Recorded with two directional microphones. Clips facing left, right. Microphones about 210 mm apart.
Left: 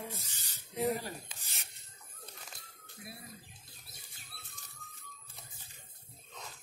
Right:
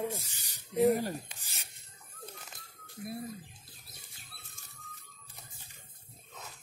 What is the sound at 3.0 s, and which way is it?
Speech, 50° right (ahead or behind).